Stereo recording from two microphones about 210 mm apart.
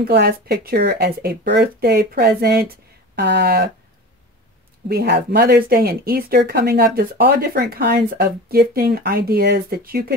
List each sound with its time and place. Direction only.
0.0 s speech: 50° right (ahead or behind)
4.8 s speech: 50° right (ahead or behind)